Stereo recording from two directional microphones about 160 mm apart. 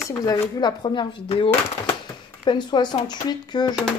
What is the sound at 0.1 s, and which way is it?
Speech, 20° left (ahead or behind).